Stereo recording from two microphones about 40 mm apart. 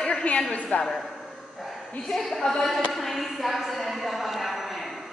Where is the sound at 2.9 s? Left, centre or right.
Centre.